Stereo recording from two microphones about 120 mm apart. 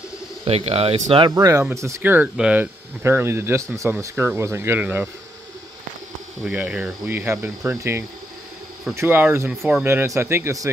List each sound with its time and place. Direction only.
0.5 s speech: 55° right (ahead or behind)
1.3 s speech: 25° right (ahead or behind)
6.4 s speech: 10° right (ahead or behind); by 10.7 s 25° right (ahead or behind)